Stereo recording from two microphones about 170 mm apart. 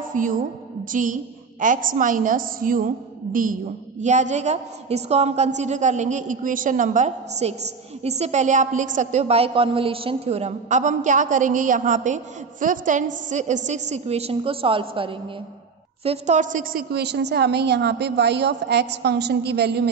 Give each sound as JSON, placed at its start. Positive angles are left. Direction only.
{"t": 0.1, "sound": "a woman's voice", "side_deg": -50}
{"t": 4.0, "sound": "a woman's voice", "side_deg": -45}
{"t": 16.9, "sound": "a woman's voice", "side_deg": -80}